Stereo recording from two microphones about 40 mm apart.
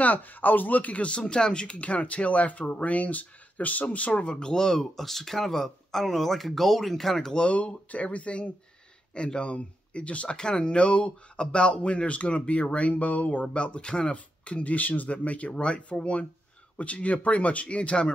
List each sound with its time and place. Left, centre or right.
0.0 s speech: left; by 7.4 s centre
7.4 s speech: left
10.3 s speech: centre
14.1 s speech: left